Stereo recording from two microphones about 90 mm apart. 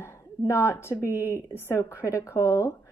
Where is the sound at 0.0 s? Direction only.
35° left (ahead or behind).